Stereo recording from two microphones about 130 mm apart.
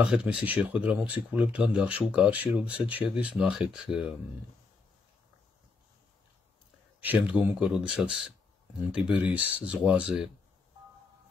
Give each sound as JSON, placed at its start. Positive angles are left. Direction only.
{"t": 0.0, "sound": "speech", "side_deg": -5}
{"t": 7.0, "sound": "speech", "side_deg": -15}